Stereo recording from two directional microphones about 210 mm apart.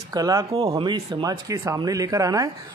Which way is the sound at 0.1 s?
15° right (ahead or behind).